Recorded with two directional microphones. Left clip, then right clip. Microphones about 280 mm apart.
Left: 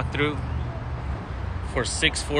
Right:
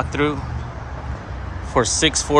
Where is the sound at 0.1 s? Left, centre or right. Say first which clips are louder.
Right 2 dB; centre.